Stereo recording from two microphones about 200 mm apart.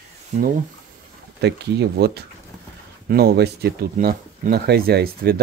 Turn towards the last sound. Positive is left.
turn(degrees=-50)  # may be behind; listen again after turning